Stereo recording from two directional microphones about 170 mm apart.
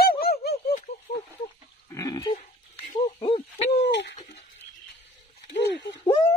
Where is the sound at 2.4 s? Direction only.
45° left (ahead or behind).